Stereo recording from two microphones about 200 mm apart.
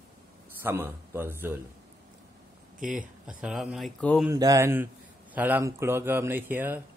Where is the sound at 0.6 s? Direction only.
10° right (ahead or behind).